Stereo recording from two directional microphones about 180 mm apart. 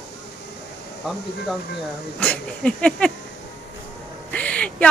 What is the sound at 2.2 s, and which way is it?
Speech, 5° left (ahead or behind).